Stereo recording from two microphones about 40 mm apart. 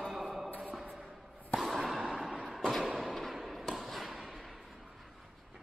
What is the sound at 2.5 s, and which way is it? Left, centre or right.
Thump, centre.